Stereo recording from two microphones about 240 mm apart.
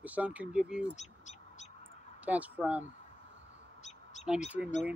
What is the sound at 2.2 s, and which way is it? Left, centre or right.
Speech, centre.